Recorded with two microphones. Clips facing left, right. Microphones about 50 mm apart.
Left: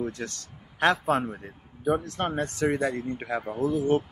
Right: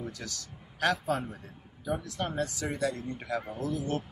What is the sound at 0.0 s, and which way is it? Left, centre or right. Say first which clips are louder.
Speech: left 7 dB; left.